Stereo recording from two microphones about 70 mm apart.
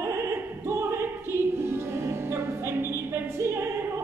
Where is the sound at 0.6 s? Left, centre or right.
Right.